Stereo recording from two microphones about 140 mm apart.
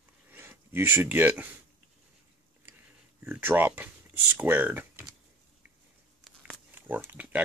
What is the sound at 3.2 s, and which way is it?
Speech, 15° right (ahead or behind).